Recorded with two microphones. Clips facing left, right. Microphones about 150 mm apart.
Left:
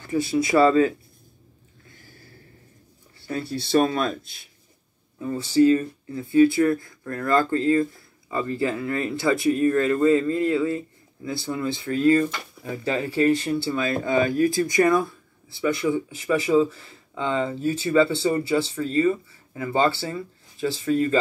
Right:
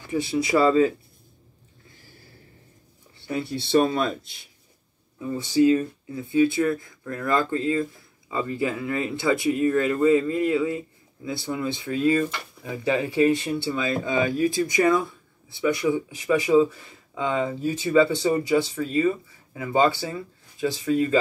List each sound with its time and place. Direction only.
0.7 s speech: 20° right (ahead or behind)
3.3 s speech: 20° right (ahead or behind)
5.4 s speech: 15° right (ahead or behind)